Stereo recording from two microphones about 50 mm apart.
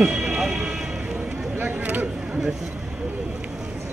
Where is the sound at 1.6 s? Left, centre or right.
Right.